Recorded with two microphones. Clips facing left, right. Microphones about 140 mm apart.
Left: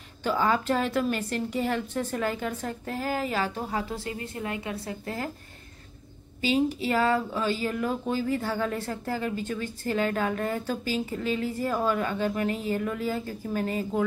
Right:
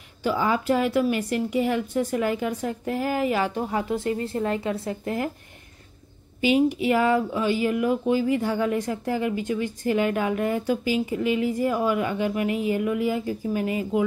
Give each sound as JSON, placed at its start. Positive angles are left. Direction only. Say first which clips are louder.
{"t": 0.2, "sound": "speech", "louder": "right 2 dB", "side_deg": -10}
{"t": 4.4, "sound": "a woman's voice", "louder": "right 7 dB", "side_deg": -30}
{"t": 6.4, "sound": "speech", "louder": "right 5 dB", "side_deg": -15}